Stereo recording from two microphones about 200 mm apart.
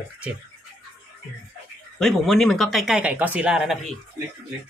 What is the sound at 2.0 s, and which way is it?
Speech, centre (ahead or behind).